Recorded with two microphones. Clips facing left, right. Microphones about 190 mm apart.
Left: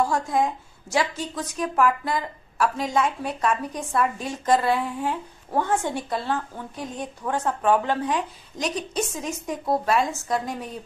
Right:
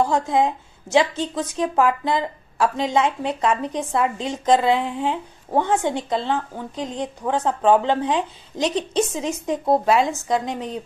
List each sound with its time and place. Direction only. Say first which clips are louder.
0.0 s a woman's voice: right 3 dB; 20° right (ahead or behind)